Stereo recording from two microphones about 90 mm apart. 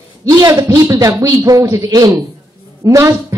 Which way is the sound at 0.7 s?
40° right (ahead or behind).